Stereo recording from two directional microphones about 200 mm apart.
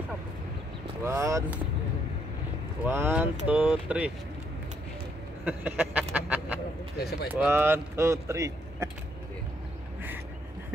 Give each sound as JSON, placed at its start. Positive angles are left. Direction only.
{"t": 1.0, "sound": "speech", "side_deg": -15}
{"t": 2.8, "sound": "speech", "side_deg": -10}
{"t": 5.4, "sound": "speech", "side_deg": -10}
{"t": 7.0, "sound": "speech", "side_deg": 55}
{"t": 7.4, "sound": "speech", "side_deg": -10}